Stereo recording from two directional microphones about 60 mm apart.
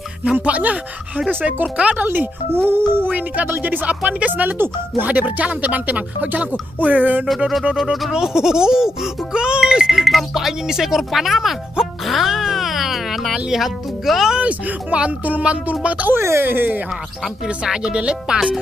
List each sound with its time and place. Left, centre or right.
0.5 s speech: right
2.0 s speech: right
3.1 s speech: right
7.7 s speech: centre
14.4 s speech: centre
16.1 s speech: right
17.6 s speech: centre